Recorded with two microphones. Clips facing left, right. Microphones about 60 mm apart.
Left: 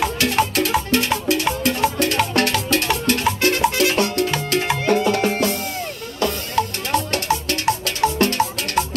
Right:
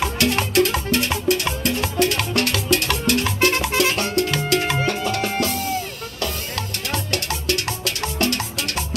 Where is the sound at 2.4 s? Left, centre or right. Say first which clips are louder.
Left 2 dB; left.